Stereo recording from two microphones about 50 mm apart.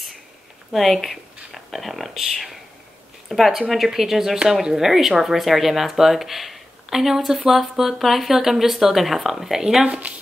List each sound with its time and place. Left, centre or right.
0.7 s speech: centre
9.8 s speech: right